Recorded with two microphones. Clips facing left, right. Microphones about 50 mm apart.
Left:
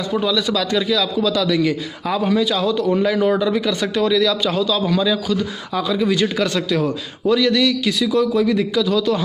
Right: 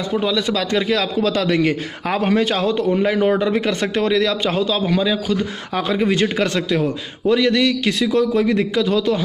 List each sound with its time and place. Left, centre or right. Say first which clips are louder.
0.2 s a man's voice: even; right
0.9 s a man's voice: even; right
2.9 s a man's voice: even; right
5.8 s a man's voice: even; right